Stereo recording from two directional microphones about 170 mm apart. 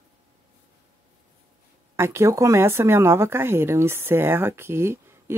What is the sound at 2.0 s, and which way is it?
Speech, 15° right (ahead or behind).